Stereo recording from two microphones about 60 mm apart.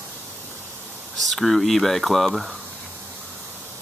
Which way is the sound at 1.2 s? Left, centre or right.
Centre.